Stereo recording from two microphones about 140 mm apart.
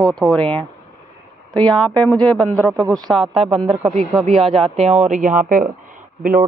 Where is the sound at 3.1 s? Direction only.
Centre (ahead or behind).